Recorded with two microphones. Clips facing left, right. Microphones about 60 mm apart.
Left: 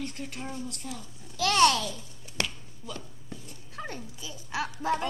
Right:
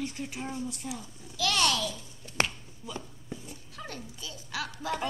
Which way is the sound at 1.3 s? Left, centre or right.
Left.